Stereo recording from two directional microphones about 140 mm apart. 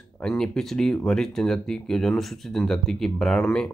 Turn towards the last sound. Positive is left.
turn(degrees=5)  # may be behind; listen again after turning